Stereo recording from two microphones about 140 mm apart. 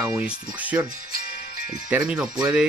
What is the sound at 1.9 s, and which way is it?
Speech, 10° right (ahead or behind).